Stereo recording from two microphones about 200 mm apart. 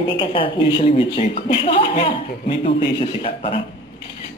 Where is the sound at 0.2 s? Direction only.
25° left (ahead or behind).